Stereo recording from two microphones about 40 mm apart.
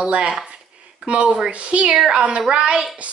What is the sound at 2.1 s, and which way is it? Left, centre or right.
Speech, right.